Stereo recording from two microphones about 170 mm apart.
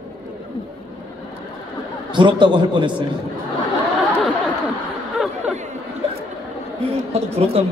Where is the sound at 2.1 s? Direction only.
30° right (ahead or behind).